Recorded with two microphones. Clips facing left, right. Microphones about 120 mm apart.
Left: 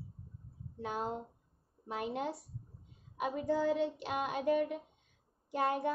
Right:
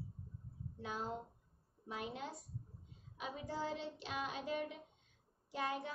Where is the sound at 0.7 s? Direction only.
60° left (ahead or behind).